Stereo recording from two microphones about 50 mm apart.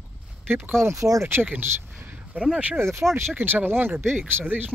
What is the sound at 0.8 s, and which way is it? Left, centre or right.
Speech, right.